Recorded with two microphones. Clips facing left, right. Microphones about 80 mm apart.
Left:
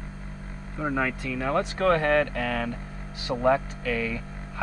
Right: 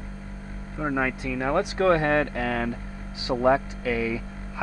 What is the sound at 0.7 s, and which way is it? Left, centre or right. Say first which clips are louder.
Speech: right 1 dB; centre.